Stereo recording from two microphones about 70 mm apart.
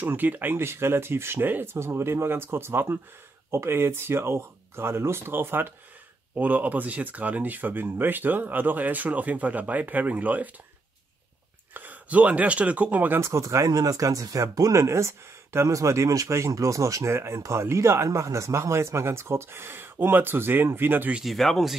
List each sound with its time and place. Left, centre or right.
0.0 s speech: right
11.7 s speech: right
13.2 s speech: right
21.2 s speech: centre